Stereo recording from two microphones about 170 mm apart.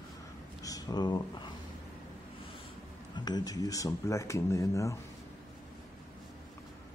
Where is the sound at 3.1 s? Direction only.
25° left (ahead or behind).